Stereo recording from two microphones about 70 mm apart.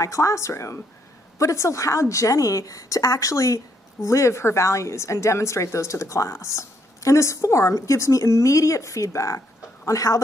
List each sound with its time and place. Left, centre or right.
0.0 s a woman's voice: left